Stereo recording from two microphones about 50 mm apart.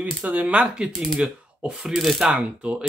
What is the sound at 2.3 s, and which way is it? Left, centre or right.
Speech, centre.